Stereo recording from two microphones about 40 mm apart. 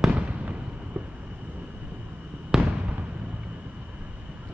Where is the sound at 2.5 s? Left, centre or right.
Centre.